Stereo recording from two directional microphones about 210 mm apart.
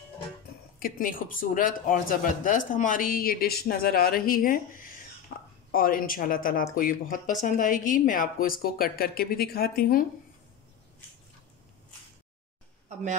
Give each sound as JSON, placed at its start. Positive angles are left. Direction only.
{"t": 0.7, "sound": "a woman's voice", "side_deg": 45}